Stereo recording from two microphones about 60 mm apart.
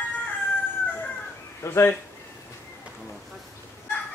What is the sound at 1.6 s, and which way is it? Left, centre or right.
Speech, left.